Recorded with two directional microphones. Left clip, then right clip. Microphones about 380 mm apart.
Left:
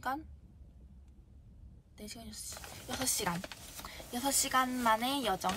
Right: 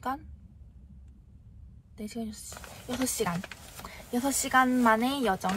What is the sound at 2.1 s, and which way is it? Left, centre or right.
Speech, centre.